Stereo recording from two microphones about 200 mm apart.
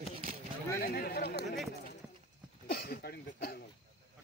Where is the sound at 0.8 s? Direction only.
50° left (ahead or behind).